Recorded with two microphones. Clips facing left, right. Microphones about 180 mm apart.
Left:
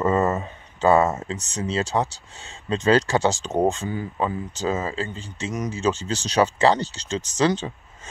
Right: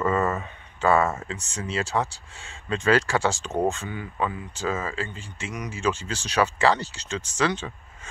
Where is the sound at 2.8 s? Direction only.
20° left (ahead or behind).